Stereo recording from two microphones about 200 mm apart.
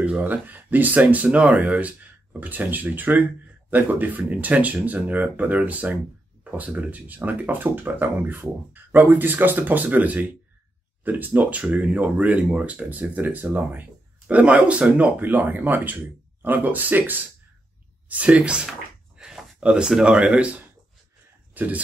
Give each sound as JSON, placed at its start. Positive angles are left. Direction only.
{"t": 0.0, "sound": "speech", "side_deg": -10}